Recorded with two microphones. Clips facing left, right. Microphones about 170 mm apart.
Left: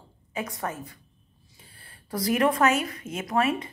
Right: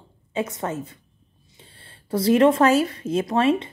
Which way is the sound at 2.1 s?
25° right (ahead or behind).